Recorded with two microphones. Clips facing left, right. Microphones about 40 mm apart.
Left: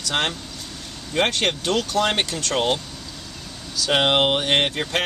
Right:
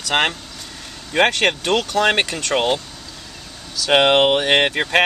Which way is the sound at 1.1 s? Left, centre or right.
Right.